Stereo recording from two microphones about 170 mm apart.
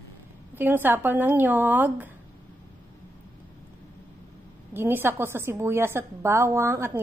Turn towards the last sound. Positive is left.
turn(degrees=-15)  # may be behind; listen again after turning